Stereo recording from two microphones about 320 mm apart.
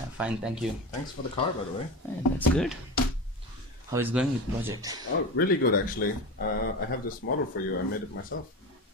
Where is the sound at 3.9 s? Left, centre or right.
Centre.